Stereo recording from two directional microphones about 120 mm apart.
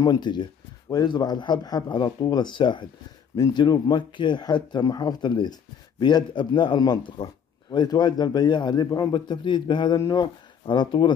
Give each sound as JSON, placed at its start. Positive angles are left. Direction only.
{"t": 0.0, "sound": "speech", "side_deg": 35}